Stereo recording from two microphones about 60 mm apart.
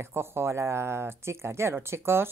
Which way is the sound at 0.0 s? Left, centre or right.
Right.